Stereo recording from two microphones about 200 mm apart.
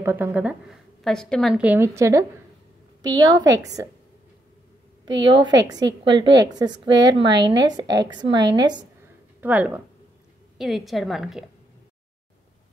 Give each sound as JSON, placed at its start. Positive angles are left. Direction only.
{"t": 0.0, "sound": "a woman's voice", "side_deg": -10}
{"t": 5.2, "sound": "a woman's voice", "side_deg": -25}
{"t": 9.4, "sound": "a woman's voice", "side_deg": -10}